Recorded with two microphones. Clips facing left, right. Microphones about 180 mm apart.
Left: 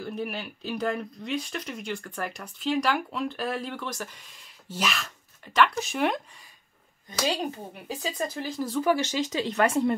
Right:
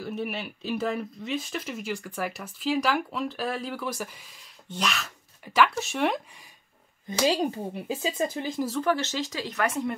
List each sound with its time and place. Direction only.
0.0 s speech: centre (ahead or behind)
7.1 s speech: 20° right (ahead or behind)
8.8 s speech: 10° left (ahead or behind); by 9.9 s 30° left (ahead or behind)